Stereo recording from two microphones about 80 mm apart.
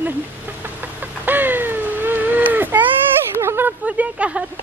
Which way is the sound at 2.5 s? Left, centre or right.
Right.